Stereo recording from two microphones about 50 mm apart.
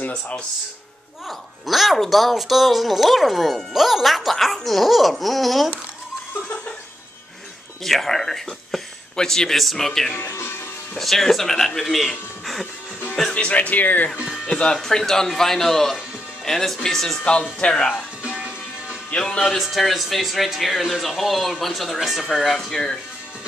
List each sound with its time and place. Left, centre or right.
0.0 s speech: left
1.7 s speech: centre
7.8 s speech: centre
13.3 s speech: left
14.4 s speech: centre
17.2 s speech: centre
18.2 s music: right
19.1 s speech: centre
19.6 s speech: centre